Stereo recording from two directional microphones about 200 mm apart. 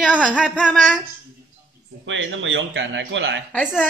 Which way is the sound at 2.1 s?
70° right (ahead or behind).